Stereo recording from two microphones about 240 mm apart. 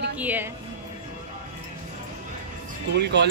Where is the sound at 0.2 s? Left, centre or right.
Centre.